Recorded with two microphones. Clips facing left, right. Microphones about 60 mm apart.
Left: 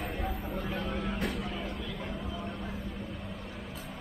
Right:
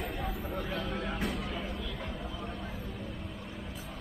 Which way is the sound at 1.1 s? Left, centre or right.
Centre.